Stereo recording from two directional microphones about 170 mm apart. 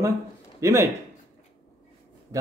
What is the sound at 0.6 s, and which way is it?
Speech, 15° right (ahead or behind).